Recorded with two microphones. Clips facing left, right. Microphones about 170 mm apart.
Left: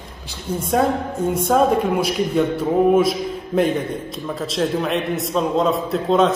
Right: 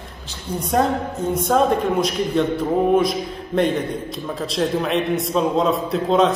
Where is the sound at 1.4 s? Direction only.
5° left (ahead or behind).